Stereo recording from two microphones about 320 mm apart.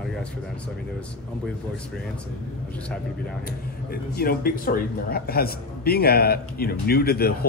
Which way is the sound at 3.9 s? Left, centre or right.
Left.